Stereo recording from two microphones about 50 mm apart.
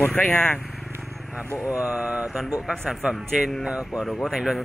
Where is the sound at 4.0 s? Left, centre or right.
Centre.